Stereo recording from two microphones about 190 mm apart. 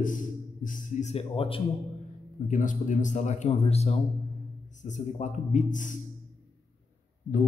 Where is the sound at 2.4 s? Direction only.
40° left (ahead or behind).